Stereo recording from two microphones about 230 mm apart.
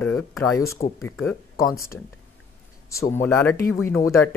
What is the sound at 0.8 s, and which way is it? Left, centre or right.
Speech, left.